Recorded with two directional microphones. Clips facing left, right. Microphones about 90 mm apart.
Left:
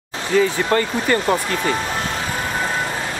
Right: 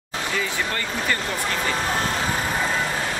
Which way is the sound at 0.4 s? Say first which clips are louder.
Left 13 dB; 40° left (ahead or behind).